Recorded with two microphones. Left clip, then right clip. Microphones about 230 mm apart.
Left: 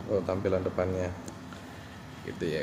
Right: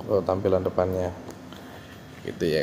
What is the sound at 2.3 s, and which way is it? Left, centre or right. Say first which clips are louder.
Speech: right 8 dB; right.